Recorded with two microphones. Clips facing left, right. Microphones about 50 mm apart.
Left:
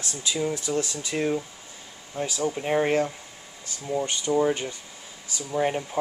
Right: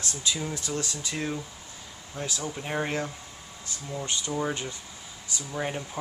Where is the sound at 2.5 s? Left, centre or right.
Centre.